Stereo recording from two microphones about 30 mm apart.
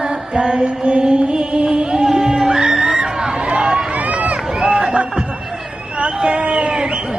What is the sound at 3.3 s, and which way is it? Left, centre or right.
Run, right.